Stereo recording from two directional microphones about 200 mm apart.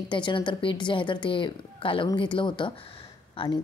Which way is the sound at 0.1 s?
25° left (ahead or behind).